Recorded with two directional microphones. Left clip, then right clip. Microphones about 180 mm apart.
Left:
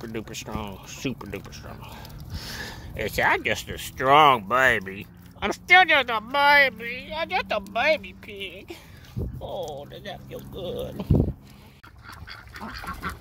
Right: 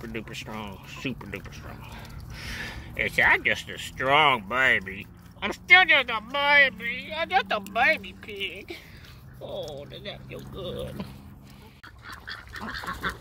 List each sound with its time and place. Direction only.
0.0 s speech: 20° left (ahead or behind)